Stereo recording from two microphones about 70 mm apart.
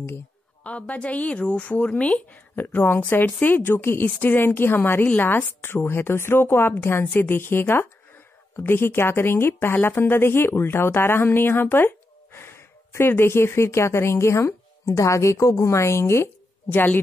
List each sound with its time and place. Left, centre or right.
0.7 s a woman's voice: centre; by 16.8 s left